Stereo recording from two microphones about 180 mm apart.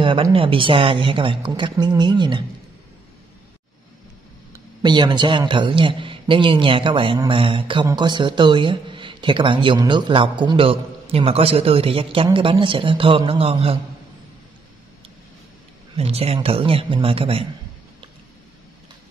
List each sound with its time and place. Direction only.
0.0 s a man's voice: 30° right (ahead or behind)
4.5 s a man's voice: 25° right (ahead or behind)
16.0 s a man's voice: 35° right (ahead or behind)